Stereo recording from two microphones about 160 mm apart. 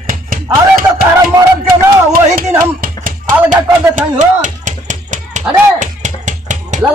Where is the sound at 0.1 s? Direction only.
60° right (ahead or behind).